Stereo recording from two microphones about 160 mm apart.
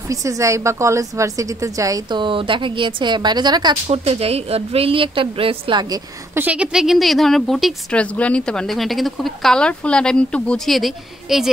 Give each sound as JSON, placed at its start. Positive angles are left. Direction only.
{"t": 0.1, "sound": "a woman's voice", "side_deg": -20}
{"t": 3.8, "sound": "speech", "side_deg": -40}
{"t": 6.3, "sound": "a woman's voice", "side_deg": -10}